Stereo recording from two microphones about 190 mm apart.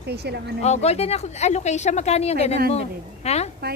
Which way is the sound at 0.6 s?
35° left (ahead or behind).